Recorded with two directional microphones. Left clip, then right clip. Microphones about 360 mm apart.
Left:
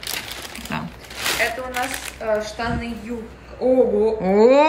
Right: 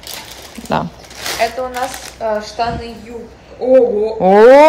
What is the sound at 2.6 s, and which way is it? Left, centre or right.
Speech, right.